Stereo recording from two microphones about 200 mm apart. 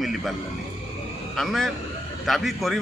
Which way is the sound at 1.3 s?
Centre (ahead or behind).